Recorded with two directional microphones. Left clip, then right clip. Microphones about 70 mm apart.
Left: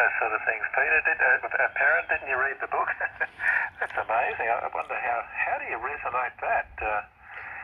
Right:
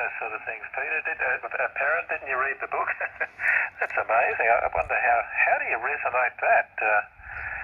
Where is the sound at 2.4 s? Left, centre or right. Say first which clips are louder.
Even; centre.